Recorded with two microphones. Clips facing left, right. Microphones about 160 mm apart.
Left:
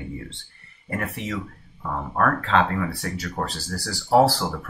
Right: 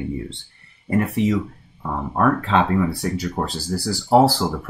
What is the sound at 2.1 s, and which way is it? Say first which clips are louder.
Speech: right 3 dB; 15° right (ahead or behind).